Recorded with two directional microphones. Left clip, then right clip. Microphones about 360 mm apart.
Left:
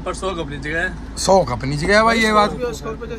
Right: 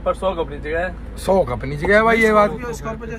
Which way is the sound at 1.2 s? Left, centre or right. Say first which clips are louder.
Left 3 dB; centre.